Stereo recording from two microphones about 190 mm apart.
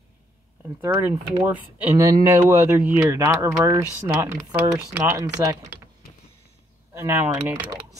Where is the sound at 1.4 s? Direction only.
10° right (ahead or behind).